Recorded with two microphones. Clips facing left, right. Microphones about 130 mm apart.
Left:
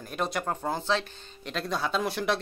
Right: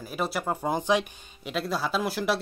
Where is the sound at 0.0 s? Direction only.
5° right (ahead or behind).